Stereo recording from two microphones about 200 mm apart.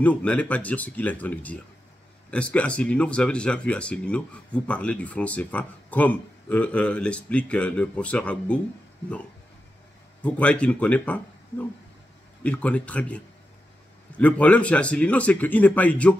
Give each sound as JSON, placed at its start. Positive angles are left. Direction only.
{"t": 0.0, "sound": "a man's voice", "side_deg": 5}
{"t": 10.2, "sound": "a man's voice", "side_deg": 5}
{"t": 12.4, "sound": "a man's voice", "side_deg": 5}